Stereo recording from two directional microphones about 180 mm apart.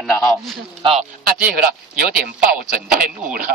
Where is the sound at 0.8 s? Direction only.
35° right (ahead or behind).